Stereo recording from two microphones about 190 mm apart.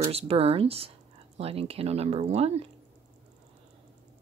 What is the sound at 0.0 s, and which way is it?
Speech, 30° right (ahead or behind).